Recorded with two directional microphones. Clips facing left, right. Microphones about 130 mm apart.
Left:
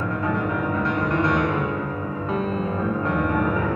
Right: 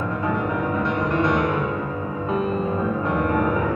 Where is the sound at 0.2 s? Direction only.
20° right (ahead or behind).